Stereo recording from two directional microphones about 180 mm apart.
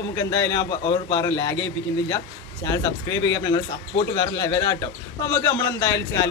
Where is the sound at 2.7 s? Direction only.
20° left (ahead or behind).